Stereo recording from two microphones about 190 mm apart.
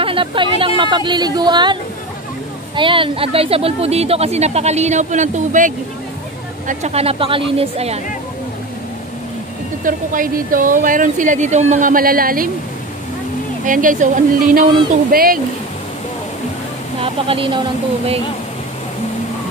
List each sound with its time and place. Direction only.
0.0 s speech: 25° right (ahead or behind)
6.7 s speech: 35° right (ahead or behind)
9.8 s speech: 45° right (ahead or behind)
13.7 s speech: 45° right (ahead or behind)
17.0 s a woman's voice: 30° right (ahead or behind)